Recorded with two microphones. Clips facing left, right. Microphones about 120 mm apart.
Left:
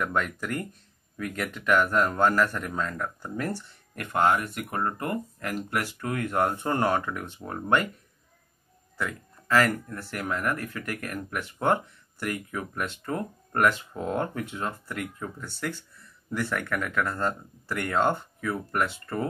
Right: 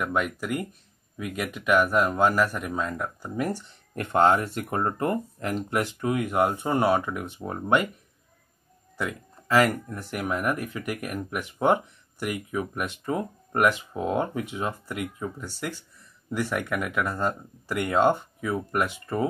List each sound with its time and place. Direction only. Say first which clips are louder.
0.0 s speech: right 1 dB; 10° right (ahead or behind)
8.9 s speech: right 2 dB; 15° right (ahead or behind)